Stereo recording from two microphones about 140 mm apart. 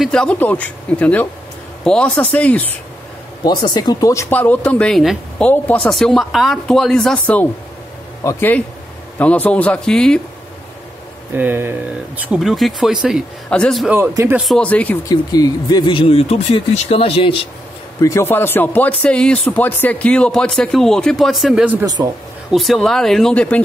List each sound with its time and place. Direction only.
0.0 s speech: 5° left (ahead or behind)
3.4 s speech: 30° left (ahead or behind); by 7.4 s 5° left (ahead or behind)
8.2 s speech: 20° left (ahead or behind)
11.3 s speech: 15° right (ahead or behind)
12.4 s speech: centre (ahead or behind)
13.8 s speech: 15° right (ahead or behind)
14.4 s speech: 5° left (ahead or behind)
15.0 s speech: 30° left (ahead or behind)
18.0 s speech: 20° left (ahead or behind); by 21.6 s centre (ahead or behind)
22.0 s speech: 25° right (ahead or behind)
22.5 s speech: centre (ahead or behind)